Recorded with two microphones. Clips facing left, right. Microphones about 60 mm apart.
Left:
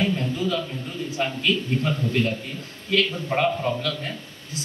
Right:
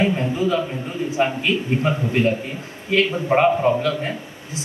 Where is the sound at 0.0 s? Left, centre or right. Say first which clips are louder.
Right 4 dB; right.